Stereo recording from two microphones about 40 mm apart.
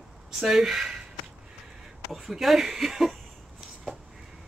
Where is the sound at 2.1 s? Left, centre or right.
Centre.